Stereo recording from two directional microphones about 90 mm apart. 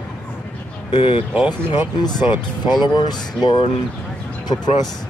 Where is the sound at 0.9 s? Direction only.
70° left (ahead or behind).